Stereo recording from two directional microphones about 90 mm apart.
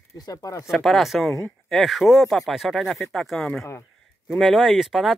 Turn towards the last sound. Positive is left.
turn(degrees=-5)  # may be behind; listen again after turning